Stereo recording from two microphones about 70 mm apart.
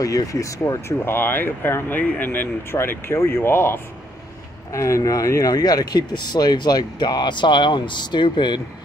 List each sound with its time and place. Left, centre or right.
0.0 s speech: left
0.9 s speech: left
4.7 s speech: left